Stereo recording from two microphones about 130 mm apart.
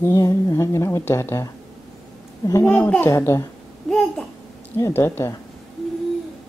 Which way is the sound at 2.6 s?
15° left (ahead or behind).